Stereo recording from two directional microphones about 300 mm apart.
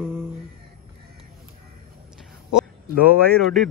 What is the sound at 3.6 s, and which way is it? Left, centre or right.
Speech, centre.